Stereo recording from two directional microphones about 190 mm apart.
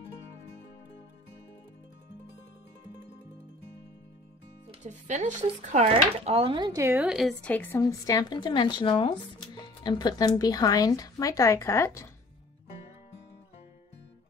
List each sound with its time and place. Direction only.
4.6 s speech: 40° right (ahead or behind); by 7.0 s 15° right (ahead or behind)
7.0 s speech: centre (ahead or behind)
7.8 s speech: 20° left (ahead or behind)